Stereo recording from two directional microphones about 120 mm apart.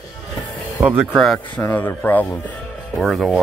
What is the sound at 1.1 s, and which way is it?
Speech, 5° left (ahead or behind).